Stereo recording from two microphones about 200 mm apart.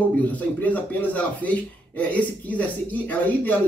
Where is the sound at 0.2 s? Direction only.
10° left (ahead or behind).